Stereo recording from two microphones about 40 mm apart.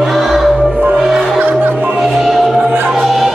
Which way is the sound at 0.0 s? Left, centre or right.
Centre.